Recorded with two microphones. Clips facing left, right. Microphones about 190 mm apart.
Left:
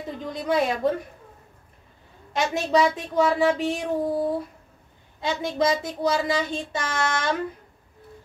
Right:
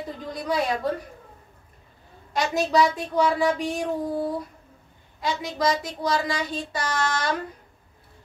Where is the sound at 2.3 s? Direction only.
25° left (ahead or behind).